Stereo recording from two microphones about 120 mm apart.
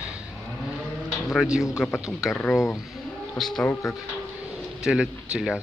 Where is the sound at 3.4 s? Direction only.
5° left (ahead or behind).